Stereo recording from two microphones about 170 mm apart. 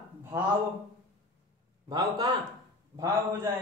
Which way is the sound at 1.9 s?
25° right (ahead or behind).